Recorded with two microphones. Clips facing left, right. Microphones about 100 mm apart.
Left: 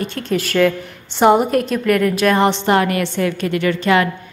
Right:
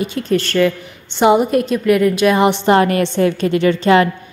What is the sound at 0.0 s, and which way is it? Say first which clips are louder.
A woman's voice: right 3 dB; 5° right (ahead or behind).